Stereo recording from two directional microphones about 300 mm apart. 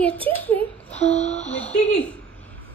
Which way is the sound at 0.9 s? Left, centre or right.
Left.